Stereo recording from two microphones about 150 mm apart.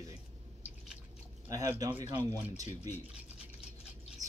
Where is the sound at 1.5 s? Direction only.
25° right (ahead or behind).